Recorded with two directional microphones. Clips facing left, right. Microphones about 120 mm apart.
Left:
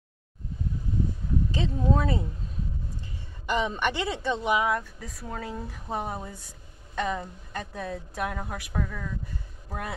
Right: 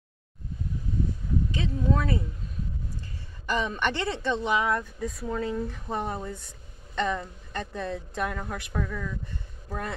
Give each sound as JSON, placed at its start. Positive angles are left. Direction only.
{"t": 1.5, "sound": "speech", "side_deg": 30}
{"t": 3.4, "sound": "speech", "side_deg": 15}